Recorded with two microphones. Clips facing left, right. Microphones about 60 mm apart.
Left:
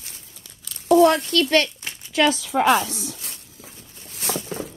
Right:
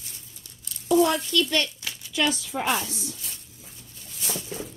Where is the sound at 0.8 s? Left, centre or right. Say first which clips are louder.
Left 6 dB; left.